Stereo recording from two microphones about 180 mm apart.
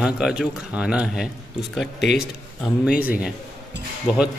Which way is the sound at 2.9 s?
10° right (ahead or behind).